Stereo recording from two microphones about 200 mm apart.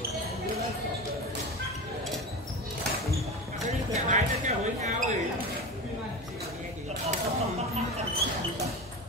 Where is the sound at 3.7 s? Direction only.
35° right (ahead or behind).